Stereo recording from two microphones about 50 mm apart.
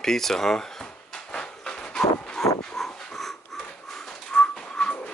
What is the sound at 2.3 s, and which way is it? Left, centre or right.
Dog, centre.